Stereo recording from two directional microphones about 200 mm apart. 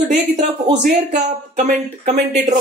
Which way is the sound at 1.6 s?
35° right (ahead or behind).